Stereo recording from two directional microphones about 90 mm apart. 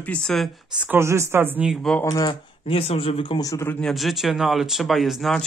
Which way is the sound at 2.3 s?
85° left.